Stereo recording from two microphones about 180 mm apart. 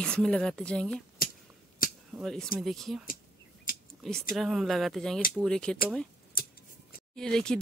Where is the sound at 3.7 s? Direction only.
50° left (ahead or behind).